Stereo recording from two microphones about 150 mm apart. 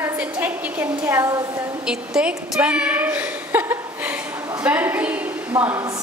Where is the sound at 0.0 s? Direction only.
10° right (ahead or behind).